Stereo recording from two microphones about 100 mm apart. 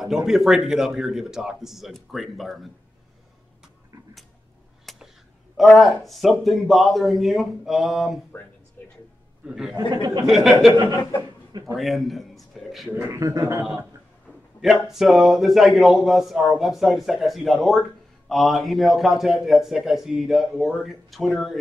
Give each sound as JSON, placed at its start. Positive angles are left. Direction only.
{"t": 0.0, "sound": "speech", "side_deg": 0}
{"t": 3.6, "sound": "a sound", "side_deg": 0}
{"t": 5.6, "sound": "speech", "side_deg": 0}
{"t": 9.5, "sound": "speech", "side_deg": -5}
{"t": 9.8, "sound": "speech", "side_deg": -40}
{"t": 10.2, "sound": "speech", "side_deg": 0}
{"t": 11.0, "sound": "speech", "side_deg": 40}
{"t": 11.7, "sound": "a man's voice", "side_deg": 0}
{"t": 13.1, "sound": "speech", "side_deg": -35}
{"t": 14.6, "sound": "speech", "side_deg": 0}